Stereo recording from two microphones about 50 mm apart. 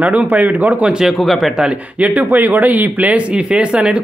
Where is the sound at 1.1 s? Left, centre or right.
Centre.